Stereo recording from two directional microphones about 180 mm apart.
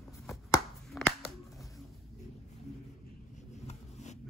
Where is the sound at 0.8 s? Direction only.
Centre (ahead or behind).